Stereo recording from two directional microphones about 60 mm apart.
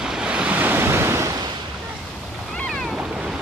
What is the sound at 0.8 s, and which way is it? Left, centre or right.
Waves, right.